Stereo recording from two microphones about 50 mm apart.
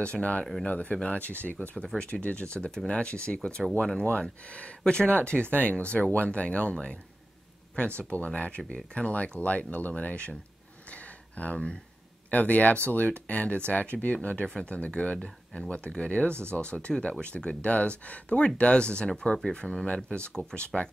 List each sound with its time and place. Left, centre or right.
0.0 s speech: left
8.0 s speech: left
10.9 s a sound: left
12.3 s speech: left